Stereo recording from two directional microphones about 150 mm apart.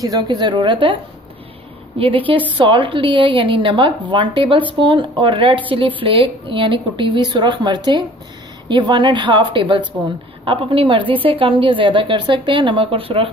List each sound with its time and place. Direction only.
0.0 s a woman's voice: 25° right (ahead or behind)
2.0 s a woman's voice: 35° right (ahead or behind)